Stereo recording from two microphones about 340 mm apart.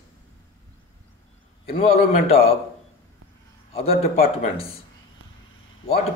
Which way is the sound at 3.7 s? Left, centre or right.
Centre.